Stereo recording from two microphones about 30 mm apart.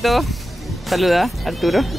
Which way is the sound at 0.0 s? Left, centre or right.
Centre.